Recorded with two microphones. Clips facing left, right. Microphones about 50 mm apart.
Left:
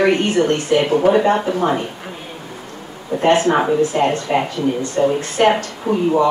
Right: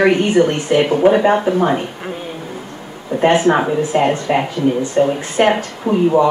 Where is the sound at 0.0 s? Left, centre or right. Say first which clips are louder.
Right 3 dB; right.